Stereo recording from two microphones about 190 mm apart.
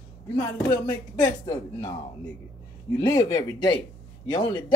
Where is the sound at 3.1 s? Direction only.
20° left (ahead or behind).